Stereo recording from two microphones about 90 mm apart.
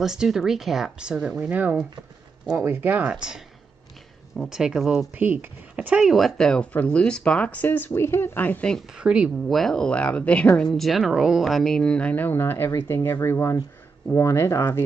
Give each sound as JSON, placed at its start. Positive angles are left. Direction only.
{"t": 0.0, "sound": "speech", "side_deg": -5}
{"t": 4.4, "sound": "speech", "side_deg": -5}
{"t": 5.1, "sound": "speech", "side_deg": -20}
{"t": 8.9, "sound": "speech", "side_deg": -10}
{"t": 9.5, "sound": "speech", "side_deg": 5}